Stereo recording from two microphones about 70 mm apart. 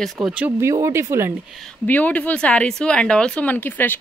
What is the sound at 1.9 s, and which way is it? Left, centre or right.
Speech, left.